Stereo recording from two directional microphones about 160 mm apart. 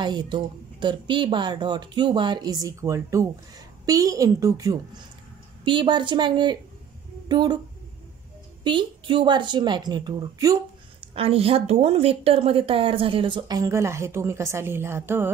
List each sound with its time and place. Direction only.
0.0 s a woman's voice: 25° right (ahead or behind)
8.6 s a woman's voice: 30° right (ahead or behind)
11.1 s a woman's voice: 35° right (ahead or behind); by 15.2 s 15° right (ahead or behind)